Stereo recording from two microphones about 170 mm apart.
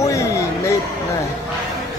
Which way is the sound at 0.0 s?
20° left (ahead or behind).